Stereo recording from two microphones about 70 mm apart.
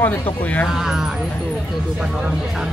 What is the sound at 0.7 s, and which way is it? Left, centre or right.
Speech, centre.